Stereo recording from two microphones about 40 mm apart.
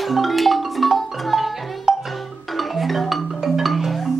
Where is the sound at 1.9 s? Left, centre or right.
Centre.